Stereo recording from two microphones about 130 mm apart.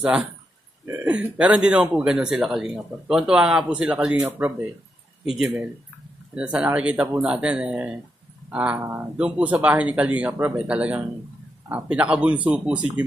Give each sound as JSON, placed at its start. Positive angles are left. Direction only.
{"t": 0.0, "sound": "speech", "side_deg": -10}
{"t": 5.2, "sound": "speech", "side_deg": -5}